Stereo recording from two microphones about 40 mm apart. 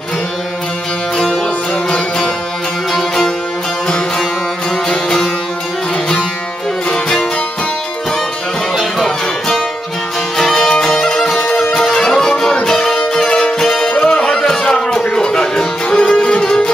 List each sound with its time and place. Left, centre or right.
2.9 s music: centre
4.8 s music: centre
6.9 s music: centre
8.7 s music: centre
10.3 s music: centre
11.3 s music: left
11.7 s music: centre
14.4 s a sound: centre
15.1 s music: centre
16.4 s music: centre